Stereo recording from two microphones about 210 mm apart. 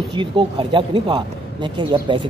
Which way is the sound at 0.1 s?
25° right (ahead or behind).